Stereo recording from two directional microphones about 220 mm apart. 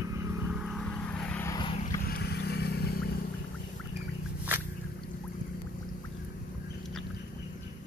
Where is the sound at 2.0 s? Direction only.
45° left (ahead or behind).